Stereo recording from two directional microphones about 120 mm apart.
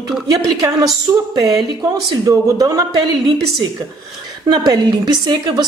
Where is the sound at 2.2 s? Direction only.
30° right (ahead or behind).